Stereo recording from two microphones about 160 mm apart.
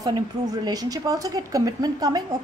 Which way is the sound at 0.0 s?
25° right (ahead or behind).